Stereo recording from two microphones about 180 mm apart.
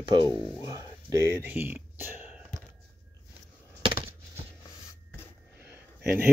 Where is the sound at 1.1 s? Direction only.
15° right (ahead or behind).